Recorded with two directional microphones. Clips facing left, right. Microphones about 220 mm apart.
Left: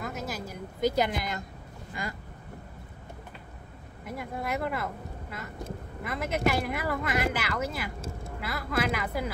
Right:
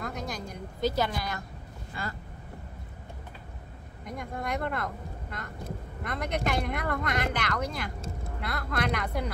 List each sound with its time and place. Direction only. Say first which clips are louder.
0.0 s a sound: even; 5° left (ahead or behind); by 1.4 s 20° left (ahead or behind)
2.0 s vehicle: left 1 dB; 15° left (ahead or behind)
4.0 s speech: left 1 dB; 5° left (ahead or behind)